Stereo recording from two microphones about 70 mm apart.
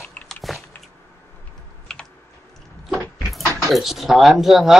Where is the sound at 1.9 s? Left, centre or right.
Centre.